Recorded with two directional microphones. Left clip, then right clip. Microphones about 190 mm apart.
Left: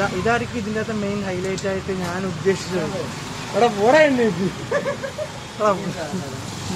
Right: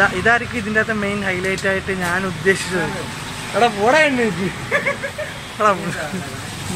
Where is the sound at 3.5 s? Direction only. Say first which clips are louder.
Right 1 dB; 10° left (ahead or behind).